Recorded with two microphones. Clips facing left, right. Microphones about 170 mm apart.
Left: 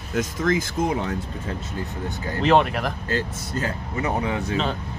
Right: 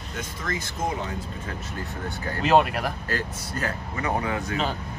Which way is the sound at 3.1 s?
25° left (ahead or behind).